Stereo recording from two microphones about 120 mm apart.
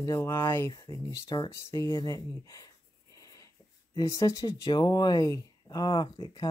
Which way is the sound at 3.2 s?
30° left (ahead or behind).